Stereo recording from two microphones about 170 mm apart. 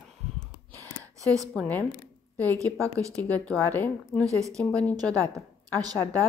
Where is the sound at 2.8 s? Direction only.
20° right (ahead or behind).